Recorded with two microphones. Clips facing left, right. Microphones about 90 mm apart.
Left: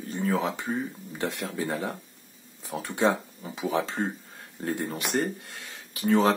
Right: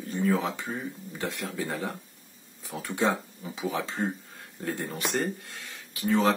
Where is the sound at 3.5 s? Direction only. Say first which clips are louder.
Left 3 dB; 40° left (ahead or behind).